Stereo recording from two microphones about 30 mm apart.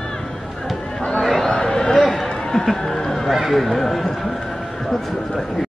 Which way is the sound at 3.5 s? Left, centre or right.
Centre.